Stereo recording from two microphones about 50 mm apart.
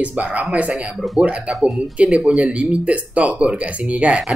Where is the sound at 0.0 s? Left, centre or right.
Right.